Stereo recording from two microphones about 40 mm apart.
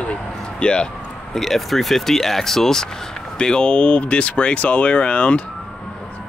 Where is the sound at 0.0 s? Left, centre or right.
Left.